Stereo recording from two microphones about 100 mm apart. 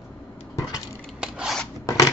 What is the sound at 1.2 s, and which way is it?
Filing, 10° right (ahead or behind).